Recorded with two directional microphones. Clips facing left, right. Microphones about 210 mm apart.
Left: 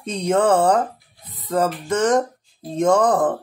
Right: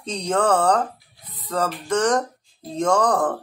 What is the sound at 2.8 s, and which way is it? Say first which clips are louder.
Speech: left 3 dB; 20° left (ahead or behind).